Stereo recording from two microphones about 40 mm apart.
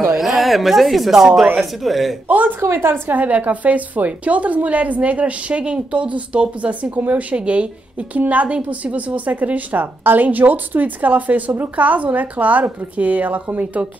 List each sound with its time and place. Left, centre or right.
0.2 s speech: centre
2.2 s a sound: right
2.6 s a woman's voice: right
3.1 s a woman's voice: right
8.2 s a woman's voice: right